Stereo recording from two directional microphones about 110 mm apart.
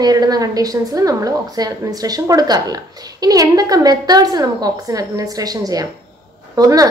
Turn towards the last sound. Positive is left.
turn(degrees=-35)  # may be behind; listen again after turning